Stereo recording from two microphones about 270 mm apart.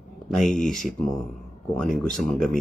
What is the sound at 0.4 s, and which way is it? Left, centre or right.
Speech, centre.